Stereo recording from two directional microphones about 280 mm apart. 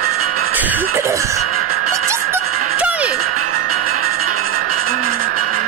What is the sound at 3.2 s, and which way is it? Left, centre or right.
Music, right.